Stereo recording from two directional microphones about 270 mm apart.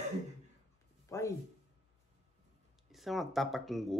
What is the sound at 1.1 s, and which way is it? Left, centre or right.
Speech, centre.